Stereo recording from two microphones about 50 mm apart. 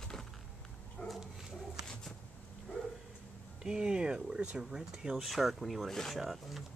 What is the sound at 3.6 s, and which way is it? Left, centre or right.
Speech, centre.